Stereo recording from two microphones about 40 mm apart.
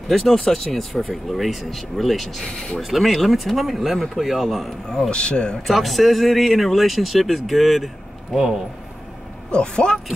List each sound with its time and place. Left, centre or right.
0.1 s speech: centre
2.5 s speech: left
2.8 s speech: centre
4.8 s speech: centre
5.1 s speech: left
5.7 s speech: centre
8.4 s speech: centre
9.5 s speech: left